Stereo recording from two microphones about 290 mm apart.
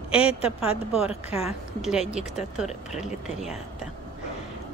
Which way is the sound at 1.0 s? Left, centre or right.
Left.